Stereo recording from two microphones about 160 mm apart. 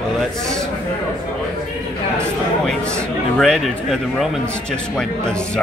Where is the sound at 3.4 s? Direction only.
Centre (ahead or behind).